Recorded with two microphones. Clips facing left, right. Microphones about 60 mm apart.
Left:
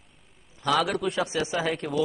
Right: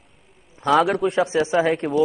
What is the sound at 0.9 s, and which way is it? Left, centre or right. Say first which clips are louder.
Speech: right 7 dB; right.